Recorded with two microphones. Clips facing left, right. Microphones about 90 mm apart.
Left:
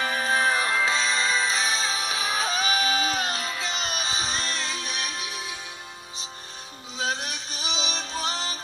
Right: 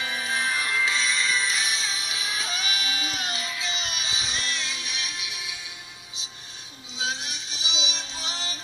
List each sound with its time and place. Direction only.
0.0 s music: 50° left (ahead or behind)
7.0 s music: 45° left (ahead or behind)